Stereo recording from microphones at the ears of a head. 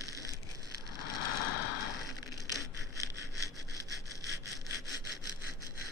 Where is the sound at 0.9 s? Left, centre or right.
Left.